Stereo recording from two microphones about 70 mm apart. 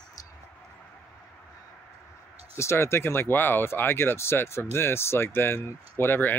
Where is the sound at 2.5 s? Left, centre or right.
Left.